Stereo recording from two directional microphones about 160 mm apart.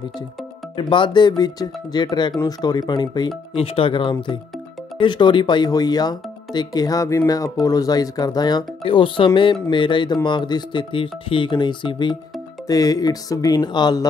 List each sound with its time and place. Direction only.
0.7 s speech: 30° left (ahead or behind)